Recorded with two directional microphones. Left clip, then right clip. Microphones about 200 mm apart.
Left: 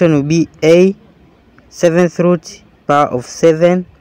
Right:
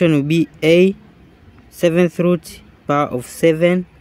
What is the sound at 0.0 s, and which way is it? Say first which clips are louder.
Speech: left 3 dB; 5° left (ahead or behind).